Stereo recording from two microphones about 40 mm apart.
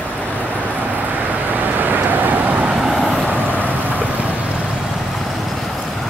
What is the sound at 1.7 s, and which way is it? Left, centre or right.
Vehicle, right.